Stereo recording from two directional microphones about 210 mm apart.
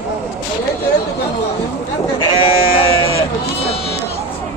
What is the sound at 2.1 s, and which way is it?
Sheep, 25° left (ahead or behind).